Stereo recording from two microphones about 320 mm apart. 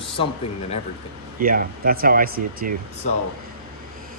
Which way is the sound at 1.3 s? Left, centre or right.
Right.